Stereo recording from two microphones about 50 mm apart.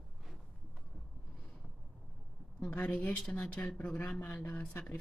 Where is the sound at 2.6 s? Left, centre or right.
Left.